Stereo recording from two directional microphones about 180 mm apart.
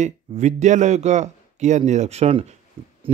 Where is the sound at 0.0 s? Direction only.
40° right (ahead or behind).